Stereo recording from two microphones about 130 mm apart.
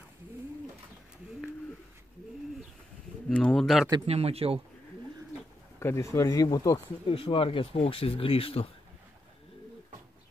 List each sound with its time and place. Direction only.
3.3 s speech: 5° left (ahead or behind)
4.0 s speech: 50° right (ahead or behind)
5.8 s speech: 20° left (ahead or behind)
7.1 s speech: 45° left (ahead or behind)